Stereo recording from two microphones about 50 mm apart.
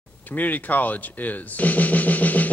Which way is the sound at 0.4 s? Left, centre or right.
Left.